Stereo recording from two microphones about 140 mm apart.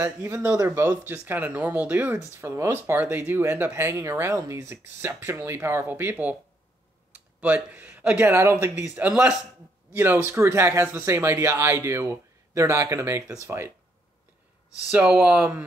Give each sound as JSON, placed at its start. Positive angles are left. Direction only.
{"t": 0.0, "sound": "speech", "side_deg": -20}
{"t": 14.9, "sound": "speech", "side_deg": -10}